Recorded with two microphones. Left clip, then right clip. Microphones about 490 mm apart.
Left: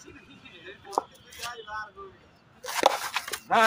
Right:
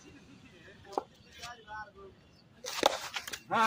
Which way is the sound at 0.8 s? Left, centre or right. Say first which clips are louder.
Left 7 dB; right.